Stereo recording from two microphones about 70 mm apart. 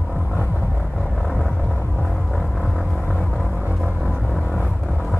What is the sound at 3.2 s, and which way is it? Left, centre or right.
Music, centre.